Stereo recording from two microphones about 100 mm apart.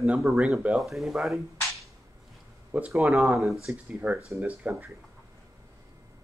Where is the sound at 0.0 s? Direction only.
5° right (ahead or behind).